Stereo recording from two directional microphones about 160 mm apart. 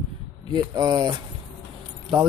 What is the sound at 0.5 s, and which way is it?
Speech, 25° right (ahead or behind).